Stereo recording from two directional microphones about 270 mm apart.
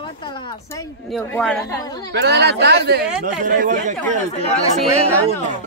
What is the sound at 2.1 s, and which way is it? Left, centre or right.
Speech, right.